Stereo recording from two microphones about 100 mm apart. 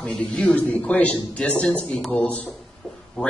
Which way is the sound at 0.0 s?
10° left (ahead or behind).